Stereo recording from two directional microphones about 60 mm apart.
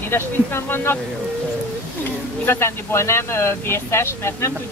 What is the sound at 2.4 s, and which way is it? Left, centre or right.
Speech, left.